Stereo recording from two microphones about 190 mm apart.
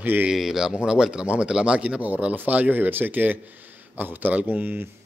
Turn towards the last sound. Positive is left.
turn(degrees=-10)  # may be behind; listen again after turning